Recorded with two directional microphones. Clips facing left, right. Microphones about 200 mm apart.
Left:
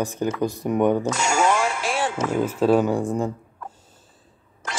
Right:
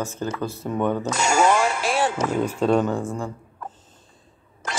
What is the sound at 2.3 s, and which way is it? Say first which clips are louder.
A man's voice: left 3 dB; 5° left (ahead or behind).